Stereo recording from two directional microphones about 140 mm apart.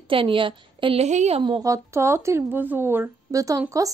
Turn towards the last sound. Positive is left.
turn(degrees=-25)  # may be behind; listen again after turning